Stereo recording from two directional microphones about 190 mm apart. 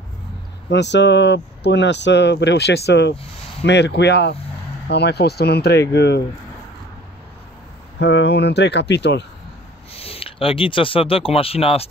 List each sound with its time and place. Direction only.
0.7 s speech: 65° left (ahead or behind)
8.0 s speech: 65° left (ahead or behind)
9.9 s speech: 30° left (ahead or behind)